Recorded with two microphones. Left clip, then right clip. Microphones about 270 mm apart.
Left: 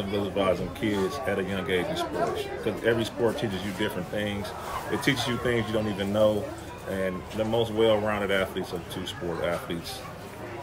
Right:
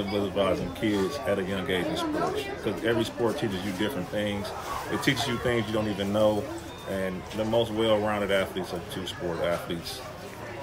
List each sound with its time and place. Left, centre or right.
0.1 s speech: centre